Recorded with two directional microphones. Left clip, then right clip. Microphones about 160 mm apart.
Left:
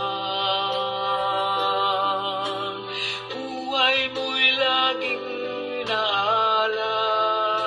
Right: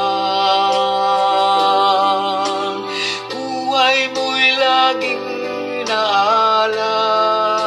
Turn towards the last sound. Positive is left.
turn(degrees=-35)  # may be behind; listen again after turning